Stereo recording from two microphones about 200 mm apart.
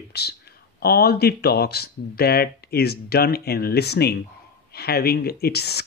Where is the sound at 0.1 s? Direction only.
55° left (ahead or behind).